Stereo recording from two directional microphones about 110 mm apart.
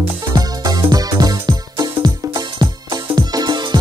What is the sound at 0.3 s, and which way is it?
Music, 35° right (ahead or behind).